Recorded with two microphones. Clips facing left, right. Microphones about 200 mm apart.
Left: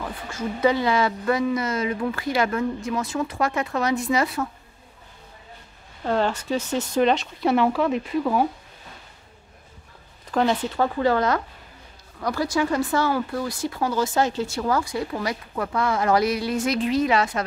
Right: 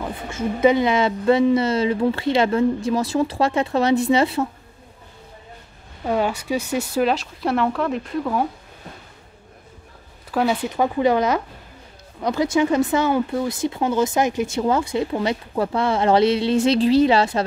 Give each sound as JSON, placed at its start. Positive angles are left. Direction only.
{"t": 0.0, "sound": "speech", "side_deg": -20}
{"t": 6.0, "sound": "speech", "side_deg": -10}
{"t": 10.3, "sound": "speech", "side_deg": -10}